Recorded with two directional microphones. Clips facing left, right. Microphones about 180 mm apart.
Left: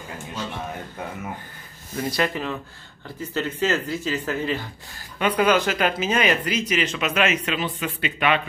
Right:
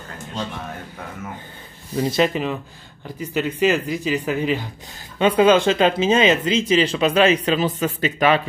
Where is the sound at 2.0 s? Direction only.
20° right (ahead or behind).